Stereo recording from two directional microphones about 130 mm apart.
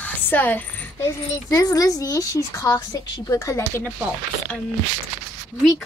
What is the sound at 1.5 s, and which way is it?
A woman's voice, 25° left (ahead or behind).